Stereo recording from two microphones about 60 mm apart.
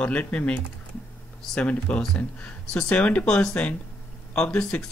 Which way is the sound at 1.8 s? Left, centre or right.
Centre.